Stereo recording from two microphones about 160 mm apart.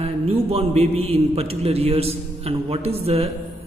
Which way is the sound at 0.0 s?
35° right (ahead or behind).